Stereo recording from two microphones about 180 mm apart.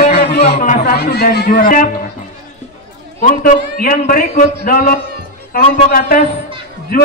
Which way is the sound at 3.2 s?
50° left (ahead or behind).